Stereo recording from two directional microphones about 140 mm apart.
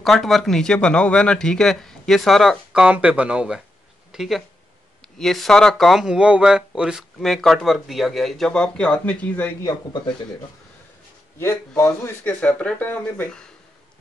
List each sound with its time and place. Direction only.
0.0 s speech: centre (ahead or behind)
4.1 s a sound: 5° right (ahead or behind)
5.2 s speech: centre (ahead or behind)
9.6 s speech: 25° left (ahead or behind)
11.3 s speech: 20° left (ahead or behind)